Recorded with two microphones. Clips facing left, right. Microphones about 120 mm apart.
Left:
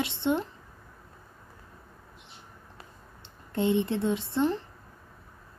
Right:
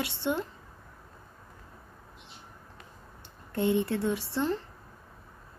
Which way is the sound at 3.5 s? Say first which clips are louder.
Left 1 dB; 20° left (ahead or behind).